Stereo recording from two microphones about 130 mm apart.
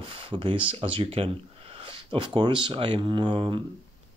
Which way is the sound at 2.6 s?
40° right (ahead or behind).